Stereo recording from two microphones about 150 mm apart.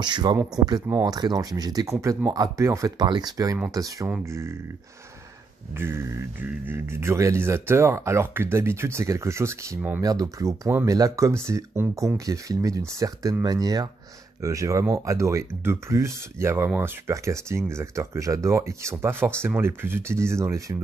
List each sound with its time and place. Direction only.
0.0 s speech: 30° right (ahead or behind)
5.8 s speech: 15° right (ahead or behind)